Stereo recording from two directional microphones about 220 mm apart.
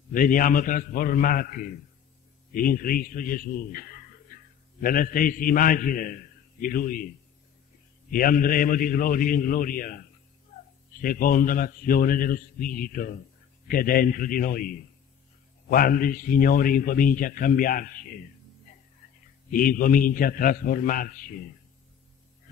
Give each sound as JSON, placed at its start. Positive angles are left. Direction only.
{"t": 0.1, "sound": "a man's voice", "side_deg": 40}
{"t": 8.1, "sound": "a man's voice", "side_deg": 40}
{"t": 19.5, "sound": "a man's voice", "side_deg": 40}